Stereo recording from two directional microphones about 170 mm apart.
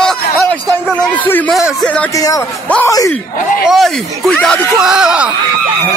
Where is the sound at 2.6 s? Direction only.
10° left (ahead or behind).